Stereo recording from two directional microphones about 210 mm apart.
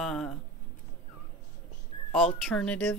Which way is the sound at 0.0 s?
Centre (ahead or behind).